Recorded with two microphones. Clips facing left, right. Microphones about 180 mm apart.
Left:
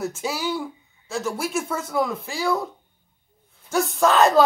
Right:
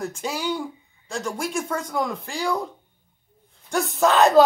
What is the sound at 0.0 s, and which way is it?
Speech, 5° left (ahead or behind).